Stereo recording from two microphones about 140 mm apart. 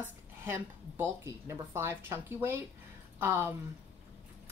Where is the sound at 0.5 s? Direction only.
20° right (ahead or behind).